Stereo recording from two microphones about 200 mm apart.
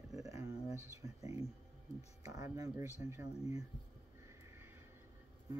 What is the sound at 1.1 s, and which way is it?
Speech, 30° left (ahead or behind).